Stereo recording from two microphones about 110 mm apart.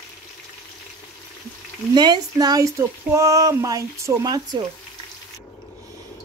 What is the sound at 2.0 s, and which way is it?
Speech, 40° right (ahead or behind).